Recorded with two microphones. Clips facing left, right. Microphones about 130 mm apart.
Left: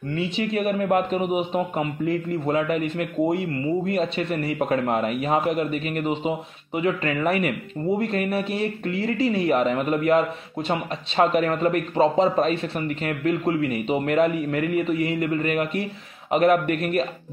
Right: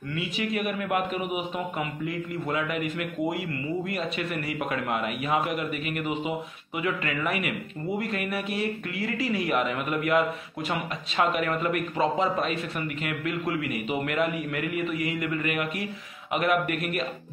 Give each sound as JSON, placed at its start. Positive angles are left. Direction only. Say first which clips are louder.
{"t": 0.1, "sound": "a man's voice", "louder": "left 5 dB", "side_deg": 30}